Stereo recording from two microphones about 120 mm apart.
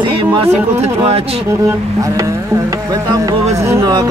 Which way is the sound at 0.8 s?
60° right (ahead or behind).